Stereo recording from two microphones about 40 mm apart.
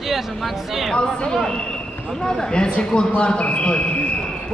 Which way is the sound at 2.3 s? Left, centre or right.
Centre.